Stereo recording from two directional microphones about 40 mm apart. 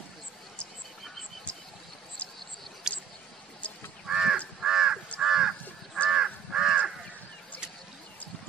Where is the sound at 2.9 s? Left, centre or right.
Centre.